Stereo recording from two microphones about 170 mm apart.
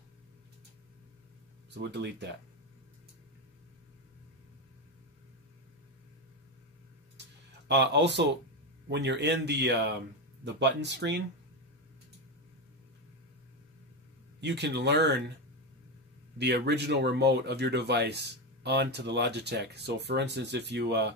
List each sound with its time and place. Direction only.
1.7 s speech: 85° right
7.6 s speech: 90° right
14.4 s speech: 90° right
16.3 s speech: 80° right